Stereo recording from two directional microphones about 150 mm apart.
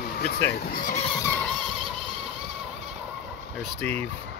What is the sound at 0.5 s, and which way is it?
Speech, 85° left.